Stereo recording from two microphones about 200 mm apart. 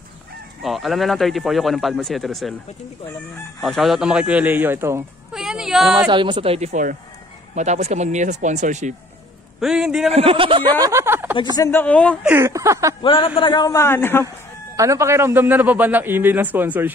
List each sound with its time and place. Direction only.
0.6 s speech: centre (ahead or behind)
3.6 s speech: centre (ahead or behind)
5.3 s a sound: centre (ahead or behind)
5.9 s speech: 20° right (ahead or behind); by 8.9 s 35° right (ahead or behind)
9.6 s speech: 5° right (ahead or behind)
10.0 s speech: 30° right (ahead or behind); by 11.3 s 10° right (ahead or behind)
11.5 s speech: 15° left (ahead or behind)
12.2 s a man's voice: 10° right (ahead or behind)
13.0 s a man's voice: 25° left (ahead or behind)
14.8 s a man's voice: 15° right (ahead or behind)